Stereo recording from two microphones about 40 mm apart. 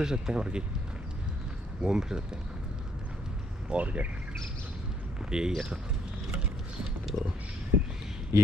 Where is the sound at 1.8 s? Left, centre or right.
Centre.